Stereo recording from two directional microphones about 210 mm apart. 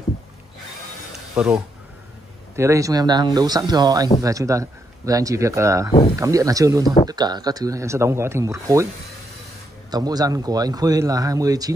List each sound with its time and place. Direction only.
1.3 s speech: 5° right (ahead or behind)
9.8 s speech: 20° right (ahead or behind)